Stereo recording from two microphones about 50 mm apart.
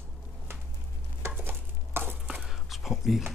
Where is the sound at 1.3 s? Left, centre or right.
Right.